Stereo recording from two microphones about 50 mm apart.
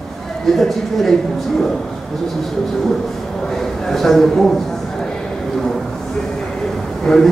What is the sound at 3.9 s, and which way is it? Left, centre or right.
Speech, centre.